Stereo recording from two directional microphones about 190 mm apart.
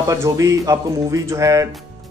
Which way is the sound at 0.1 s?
15° right (ahead or behind).